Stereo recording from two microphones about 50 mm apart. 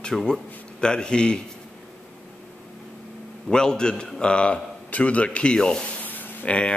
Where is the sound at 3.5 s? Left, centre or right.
Centre.